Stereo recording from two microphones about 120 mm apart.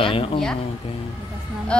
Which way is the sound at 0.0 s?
50° left (ahead or behind).